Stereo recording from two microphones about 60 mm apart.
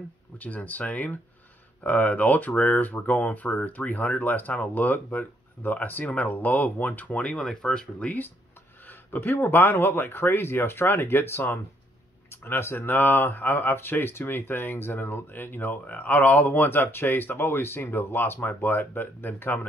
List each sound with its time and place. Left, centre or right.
0.4 s speech: left
7.3 s speech: centre
8.0 s speech: left